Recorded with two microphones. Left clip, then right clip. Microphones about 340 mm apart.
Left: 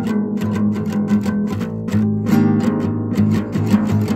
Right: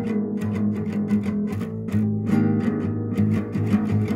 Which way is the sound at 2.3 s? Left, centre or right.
Left.